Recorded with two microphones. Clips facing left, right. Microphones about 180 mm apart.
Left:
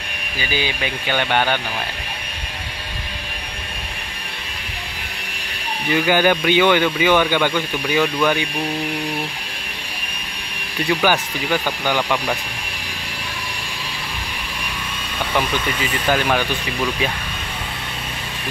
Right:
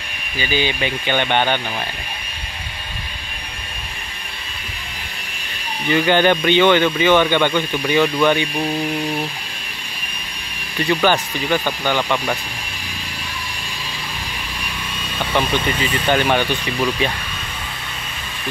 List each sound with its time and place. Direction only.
0.4 s speech: 5° left (ahead or behind)
5.9 s speech: 5° left (ahead or behind)
10.9 s speech: 10° left (ahead or behind)
15.8 s speech: 5° left (ahead or behind)